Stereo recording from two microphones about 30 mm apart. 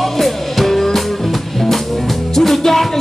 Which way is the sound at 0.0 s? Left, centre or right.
Centre.